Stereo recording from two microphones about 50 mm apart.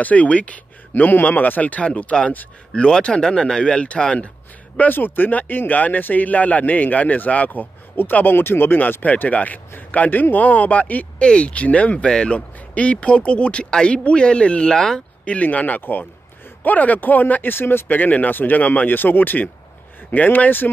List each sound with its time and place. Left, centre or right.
0.0 s speech: left
4.7 s speech: left
11.1 s speech: left
12.0 s speech: centre
14.8 s speech: centre
15.4 s speech: left